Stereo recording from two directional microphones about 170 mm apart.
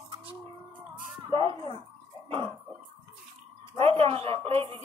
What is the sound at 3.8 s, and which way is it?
Music, 35° right (ahead or behind).